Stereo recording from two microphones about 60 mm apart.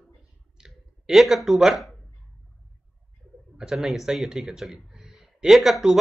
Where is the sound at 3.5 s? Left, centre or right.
Centre.